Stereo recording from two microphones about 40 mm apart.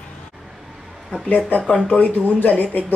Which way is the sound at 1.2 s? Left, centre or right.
Left.